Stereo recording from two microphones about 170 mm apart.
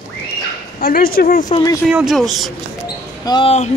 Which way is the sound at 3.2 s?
25° left (ahead or behind).